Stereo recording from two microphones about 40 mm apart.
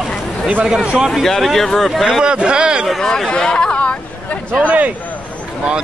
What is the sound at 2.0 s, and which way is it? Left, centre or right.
Speech, right.